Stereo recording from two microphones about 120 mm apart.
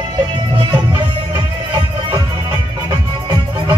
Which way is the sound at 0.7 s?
25° right (ahead or behind).